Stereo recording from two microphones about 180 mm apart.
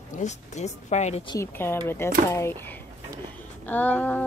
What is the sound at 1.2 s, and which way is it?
Speech, 20° left (ahead or behind).